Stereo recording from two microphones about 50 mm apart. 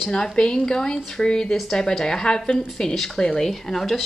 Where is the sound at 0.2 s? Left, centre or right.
Centre.